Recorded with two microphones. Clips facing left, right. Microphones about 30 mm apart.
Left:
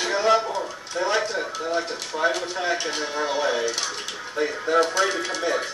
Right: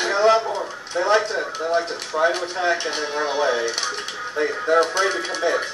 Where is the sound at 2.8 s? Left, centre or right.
Right.